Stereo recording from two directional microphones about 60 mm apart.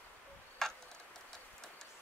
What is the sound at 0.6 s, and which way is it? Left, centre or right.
Tick-tock, centre.